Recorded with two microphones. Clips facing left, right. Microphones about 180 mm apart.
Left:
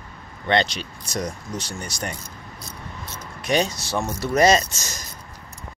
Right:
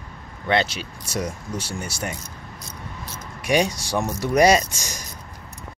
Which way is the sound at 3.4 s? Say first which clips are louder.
Right 1 dB; 10° right (ahead or behind).